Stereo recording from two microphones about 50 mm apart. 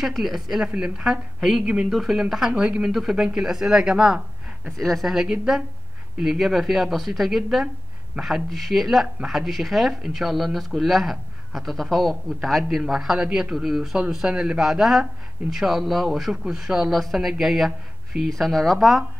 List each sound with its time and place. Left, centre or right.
0.0 s speech: centre
0.7 s a woman's voice: centre
1.6 s speech: right
1.9 s a woman's voice: centre
2.5 s speech: right
2.8 s a woman's voice: centre
4.7 s a woman's voice: centre